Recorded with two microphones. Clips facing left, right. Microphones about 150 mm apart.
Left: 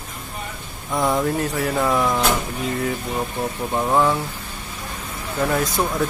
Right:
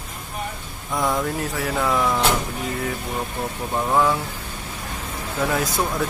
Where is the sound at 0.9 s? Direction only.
5° left (ahead or behind).